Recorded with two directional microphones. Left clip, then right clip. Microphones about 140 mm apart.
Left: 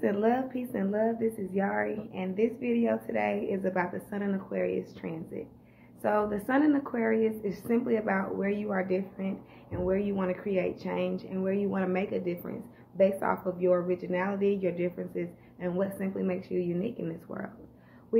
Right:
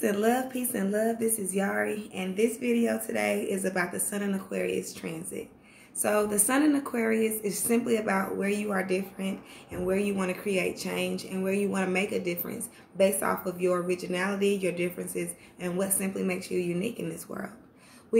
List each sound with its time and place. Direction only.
0.0 s a woman's voice: 25° right (ahead or behind)